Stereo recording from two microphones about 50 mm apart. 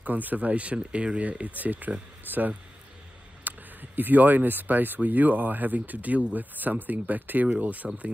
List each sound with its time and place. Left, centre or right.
0.0 s speech: right